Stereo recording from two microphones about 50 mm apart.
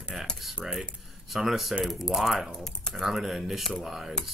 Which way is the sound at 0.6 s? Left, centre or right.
Centre.